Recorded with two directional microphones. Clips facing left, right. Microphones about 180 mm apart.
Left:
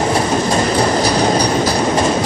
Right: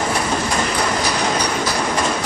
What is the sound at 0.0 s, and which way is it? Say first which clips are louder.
Train: left 5 dB; 30° left (ahead or behind).